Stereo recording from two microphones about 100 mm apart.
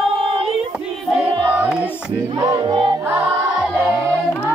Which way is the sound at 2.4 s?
40° right (ahead or behind).